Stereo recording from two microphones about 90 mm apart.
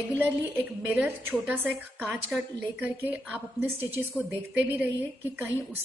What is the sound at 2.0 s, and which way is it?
A woman's voice, 15° right (ahead or behind).